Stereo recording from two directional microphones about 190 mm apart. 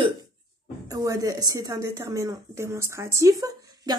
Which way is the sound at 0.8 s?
20° right (ahead or behind).